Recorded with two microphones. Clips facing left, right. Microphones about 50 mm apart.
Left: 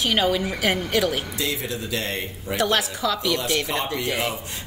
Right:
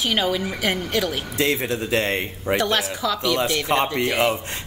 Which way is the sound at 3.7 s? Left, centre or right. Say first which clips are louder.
Right 6 dB; right.